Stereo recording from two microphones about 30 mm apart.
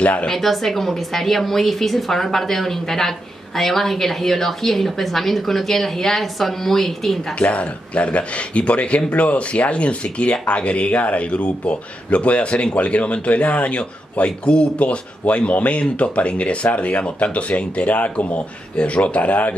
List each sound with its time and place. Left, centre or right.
0.0 s a man's voice: left
0.3 s a woman's voice: centre
7.3 s a man's voice: left
10.9 s a man's voice: left
13.7 s a man's voice: left